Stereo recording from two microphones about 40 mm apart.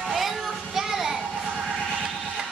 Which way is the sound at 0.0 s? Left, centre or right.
Centre.